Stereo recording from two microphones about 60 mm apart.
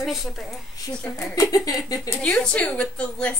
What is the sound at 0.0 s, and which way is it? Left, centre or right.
Speech, centre.